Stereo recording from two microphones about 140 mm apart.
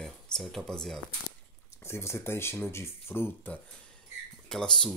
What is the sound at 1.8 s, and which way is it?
Speech, 20° left (ahead or behind).